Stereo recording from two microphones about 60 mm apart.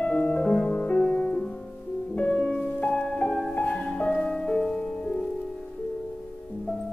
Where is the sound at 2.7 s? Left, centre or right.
Left.